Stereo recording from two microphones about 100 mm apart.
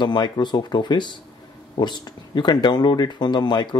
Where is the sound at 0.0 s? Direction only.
50° left (ahead or behind).